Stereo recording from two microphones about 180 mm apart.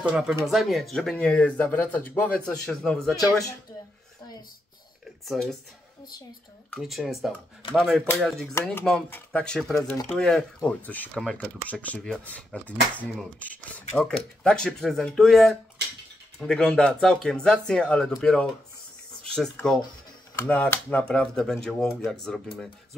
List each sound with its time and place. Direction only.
0.0 s speech: 5° right (ahead or behind)
5.2 s speech: centre (ahead or behind)
6.7 s speech: centre (ahead or behind)
9.8 s speech: 15° left (ahead or behind)
10.0 s speech: 5° left (ahead or behind)